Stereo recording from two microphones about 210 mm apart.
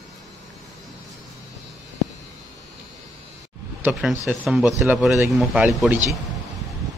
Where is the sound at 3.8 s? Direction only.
Centre (ahead or behind).